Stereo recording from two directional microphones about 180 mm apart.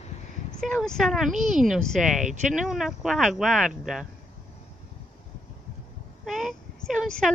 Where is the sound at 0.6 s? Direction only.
Centre (ahead or behind).